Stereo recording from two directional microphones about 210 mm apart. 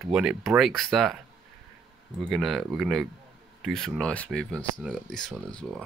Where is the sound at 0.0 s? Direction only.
Centre (ahead or behind).